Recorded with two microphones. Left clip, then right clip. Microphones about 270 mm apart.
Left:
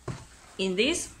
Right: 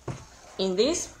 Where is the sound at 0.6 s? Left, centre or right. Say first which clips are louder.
Right 2 dB; centre.